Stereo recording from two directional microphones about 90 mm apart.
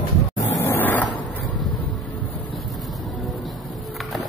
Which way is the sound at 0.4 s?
35° left (ahead or behind).